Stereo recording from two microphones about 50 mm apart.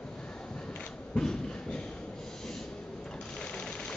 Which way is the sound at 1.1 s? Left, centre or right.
Centre.